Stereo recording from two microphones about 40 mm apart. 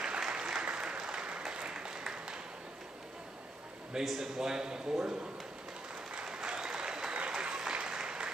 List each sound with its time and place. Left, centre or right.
0.3 s applause: centre
4.0 s a man's voice: centre
6.1 s applause: right